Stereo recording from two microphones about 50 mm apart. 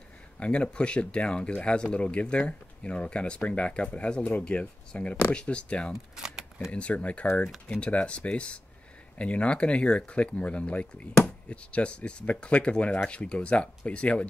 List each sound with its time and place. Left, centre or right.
0.4 s speech: left
5.9 s shuffling cards: centre
6.7 s speech: left